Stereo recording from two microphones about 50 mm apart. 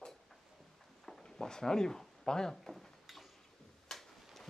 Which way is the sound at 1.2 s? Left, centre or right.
Centre.